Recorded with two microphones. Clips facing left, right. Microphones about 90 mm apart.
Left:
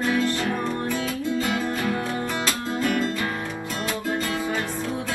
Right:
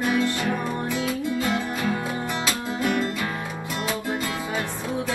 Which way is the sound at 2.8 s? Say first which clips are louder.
Even; 20° right (ahead or behind).